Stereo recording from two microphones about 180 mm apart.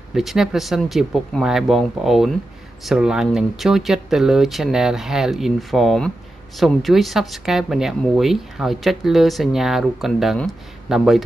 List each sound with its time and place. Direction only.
0.1 s speech: centre (ahead or behind)